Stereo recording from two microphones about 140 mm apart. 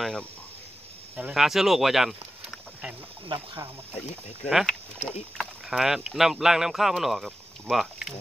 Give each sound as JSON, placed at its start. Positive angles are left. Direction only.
{"t": 0.0, "sound": "speech", "side_deg": 5}
{"t": 1.1, "sound": "speech", "side_deg": -5}
{"t": 3.3, "sound": "speech", "side_deg": -40}
{"t": 4.5, "sound": "speech", "side_deg": 0}